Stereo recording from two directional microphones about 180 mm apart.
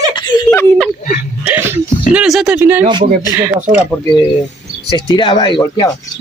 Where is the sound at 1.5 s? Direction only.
10° right (ahead or behind).